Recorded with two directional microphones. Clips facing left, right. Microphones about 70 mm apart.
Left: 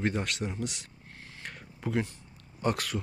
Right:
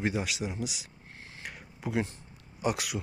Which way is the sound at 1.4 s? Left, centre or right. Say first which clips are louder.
Left 1 dB; centre.